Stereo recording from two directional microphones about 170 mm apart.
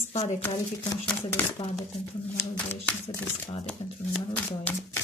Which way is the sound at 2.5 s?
10° left (ahead or behind).